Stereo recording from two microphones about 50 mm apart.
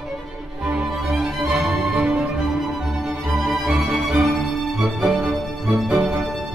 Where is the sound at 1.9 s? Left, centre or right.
Right.